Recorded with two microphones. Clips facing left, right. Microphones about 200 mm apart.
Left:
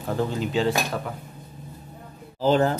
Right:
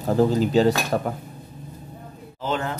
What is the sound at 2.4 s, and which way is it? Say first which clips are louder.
Speech: left 7 dB; 35° left (ahead or behind).